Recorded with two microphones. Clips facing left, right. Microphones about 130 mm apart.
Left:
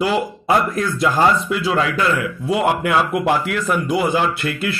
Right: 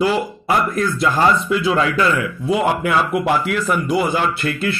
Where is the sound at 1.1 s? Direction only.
5° left (ahead or behind).